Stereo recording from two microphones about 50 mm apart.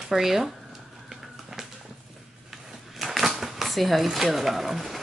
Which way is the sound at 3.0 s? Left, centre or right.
Centre.